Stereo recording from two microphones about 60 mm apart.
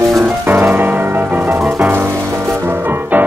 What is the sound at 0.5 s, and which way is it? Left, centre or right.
Music, right.